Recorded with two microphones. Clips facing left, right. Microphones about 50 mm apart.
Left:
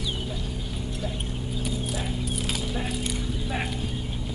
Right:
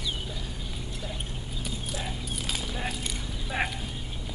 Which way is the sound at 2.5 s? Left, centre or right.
Centre.